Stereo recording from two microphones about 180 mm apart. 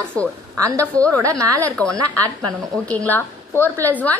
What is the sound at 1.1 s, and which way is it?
Speech, 20° right (ahead or behind).